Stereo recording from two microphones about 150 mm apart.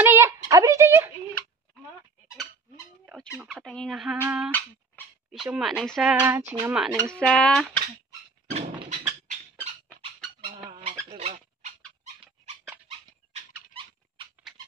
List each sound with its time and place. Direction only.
0.0 s a sound: 15° right (ahead or behind)
3.3 s squeak: centre (ahead or behind)
4.2 s speech: 15° right (ahead or behind)
5.3 s speech: centre (ahead or behind)
6.1 s speech: 15° right (ahead or behind)
6.7 s speech: 5° right (ahead or behind)
7.1 s speech: 5° left (ahead or behind)
8.8 s a sound: 55° right (ahead or behind)
10.4 s bird: 40° right (ahead or behind)
11.1 s a sound: 45° right (ahead or behind)